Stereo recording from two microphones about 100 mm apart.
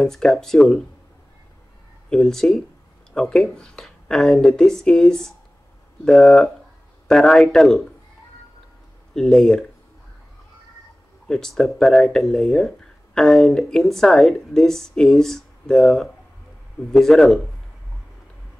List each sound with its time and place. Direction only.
0.0 s speech: 5° left (ahead or behind)
2.0 s speech: 5° left (ahead or behind)
9.1 s speech: 5° left (ahead or behind)
11.2 s speech: 5° left (ahead or behind)